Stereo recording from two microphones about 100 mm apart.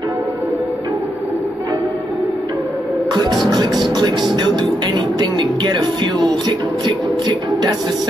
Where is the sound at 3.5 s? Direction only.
45° right (ahead or behind).